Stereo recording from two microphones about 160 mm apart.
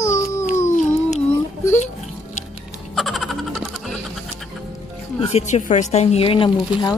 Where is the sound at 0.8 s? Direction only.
45° left (ahead or behind).